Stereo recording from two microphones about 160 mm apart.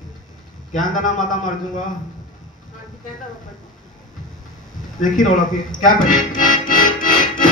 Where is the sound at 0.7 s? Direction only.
55° left (ahead or behind).